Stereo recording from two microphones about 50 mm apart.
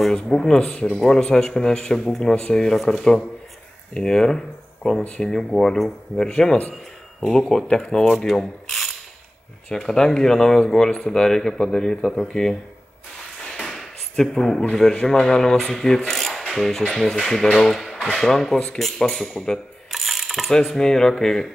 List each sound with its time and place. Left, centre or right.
0.1 s speech: centre
0.6 s speech: left
0.9 s speech: centre
7.6 s speech: left
8.3 s rub: centre
9.7 s speech: centre
13.6 s a sound: centre
14.1 s speech: centre
18.0 s speech: centre
18.8 s ratchet: centre
20.7 s speech: centre